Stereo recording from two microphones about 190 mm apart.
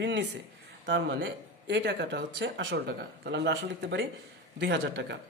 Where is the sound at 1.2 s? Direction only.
65° right (ahead or behind).